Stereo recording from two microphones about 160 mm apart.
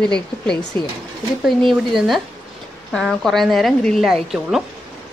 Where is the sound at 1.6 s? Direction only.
Centre (ahead or behind).